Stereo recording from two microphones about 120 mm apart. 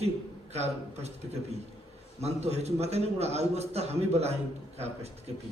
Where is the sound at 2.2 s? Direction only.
65° right (ahead or behind).